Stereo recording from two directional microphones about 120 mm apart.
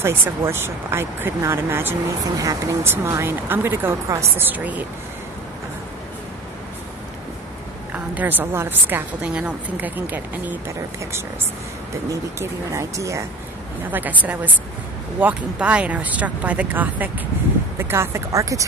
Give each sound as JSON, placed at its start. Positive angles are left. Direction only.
{"t": 0.0, "sound": "a woman's voice", "side_deg": -20}
{"t": 7.9, "sound": "a woman's voice", "side_deg": -15}
{"t": 12.4, "sound": "speech", "side_deg": -25}
{"t": 13.8, "sound": "a woman's voice", "side_deg": -15}